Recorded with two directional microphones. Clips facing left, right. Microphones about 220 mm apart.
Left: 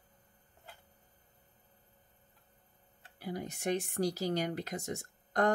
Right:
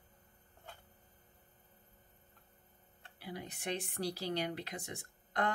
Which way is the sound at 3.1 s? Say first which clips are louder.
Left 6 dB; 45° left (ahead or behind).